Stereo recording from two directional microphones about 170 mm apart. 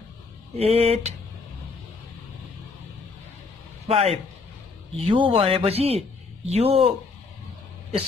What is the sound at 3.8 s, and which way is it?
A man's voice, 35° right (ahead or behind).